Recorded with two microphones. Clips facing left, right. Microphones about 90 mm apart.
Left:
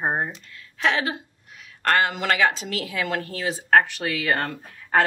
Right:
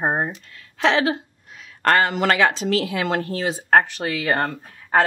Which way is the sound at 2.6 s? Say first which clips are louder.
Right 6 dB; 35° right (ahead or behind).